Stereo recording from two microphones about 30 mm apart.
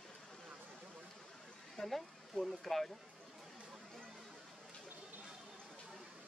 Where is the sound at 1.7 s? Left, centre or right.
Centre.